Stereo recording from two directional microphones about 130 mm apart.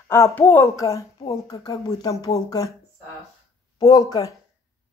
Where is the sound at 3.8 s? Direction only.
25° left (ahead or behind).